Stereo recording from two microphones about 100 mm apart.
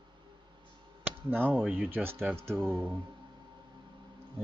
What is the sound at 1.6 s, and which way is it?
Speech, 10° right (ahead or behind).